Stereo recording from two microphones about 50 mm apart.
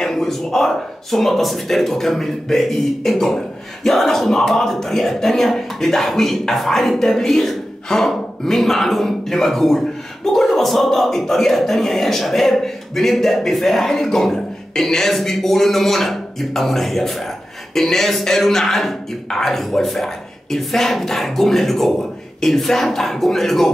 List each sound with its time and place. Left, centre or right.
0.0 s speech: centre